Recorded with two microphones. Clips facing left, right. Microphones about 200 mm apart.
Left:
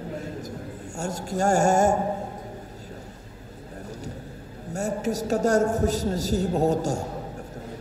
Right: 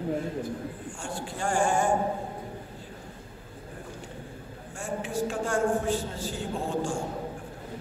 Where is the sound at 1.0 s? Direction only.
40° left (ahead or behind).